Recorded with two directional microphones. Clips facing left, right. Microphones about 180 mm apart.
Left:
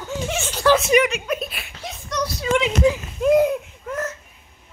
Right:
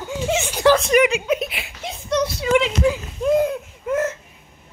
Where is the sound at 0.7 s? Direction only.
5° left (ahead or behind).